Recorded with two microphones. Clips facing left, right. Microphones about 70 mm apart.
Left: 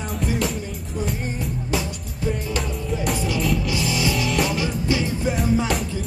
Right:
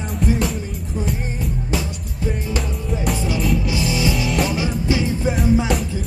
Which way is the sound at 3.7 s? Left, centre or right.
Right.